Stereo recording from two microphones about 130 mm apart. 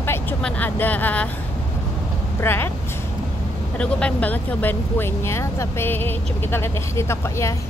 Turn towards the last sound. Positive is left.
turn(degrees=20)  # may be behind; listen again after turning